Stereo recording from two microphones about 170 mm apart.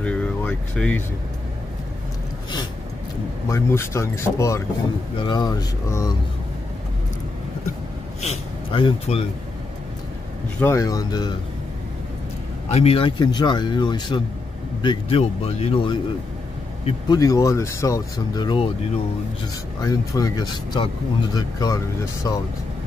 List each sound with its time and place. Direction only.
0.0 s vehicle: 5° left (ahead or behind)
3.4 s speech: 15° left (ahead or behind)
5.1 s speech: 25° left (ahead or behind)
8.2 s speech: 35° left (ahead or behind)
10.6 s speech: 15° left (ahead or behind)
12.7 s speech: 35° left (ahead or behind)
19.8 s speech: 20° left (ahead or behind)